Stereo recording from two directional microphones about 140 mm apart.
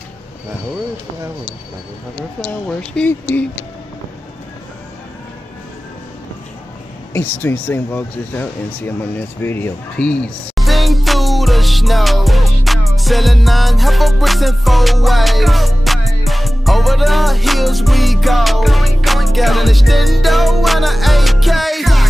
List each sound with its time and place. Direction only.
2.8 s speech: 5° left (ahead or behind)
7.2 s speech: 15° left (ahead or behind)
9.9 s music: 5° left (ahead or behind)